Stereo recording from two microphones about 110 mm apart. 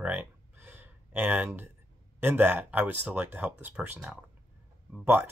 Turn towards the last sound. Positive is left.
turn(degrees=-20)  # may be behind; listen again after turning